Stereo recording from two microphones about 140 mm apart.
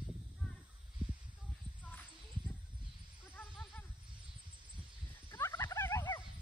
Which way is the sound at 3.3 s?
10° left (ahead or behind).